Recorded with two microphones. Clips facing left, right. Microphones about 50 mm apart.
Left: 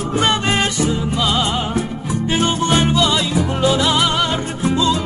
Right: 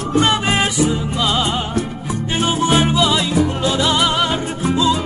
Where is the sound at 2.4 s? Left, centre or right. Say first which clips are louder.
Right 2 dB; centre.